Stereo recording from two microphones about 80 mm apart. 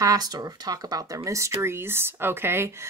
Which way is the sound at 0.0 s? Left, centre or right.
Right.